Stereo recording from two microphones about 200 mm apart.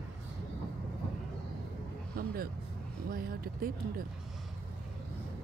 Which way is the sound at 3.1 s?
45° right (ahead or behind).